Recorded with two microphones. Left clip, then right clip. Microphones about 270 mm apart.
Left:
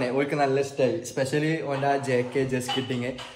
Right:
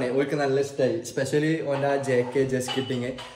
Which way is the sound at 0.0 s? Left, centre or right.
Centre.